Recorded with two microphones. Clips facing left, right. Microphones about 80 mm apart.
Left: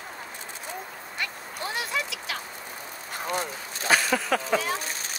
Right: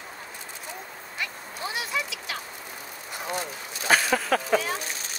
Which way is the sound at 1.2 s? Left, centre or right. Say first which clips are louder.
Even; centre.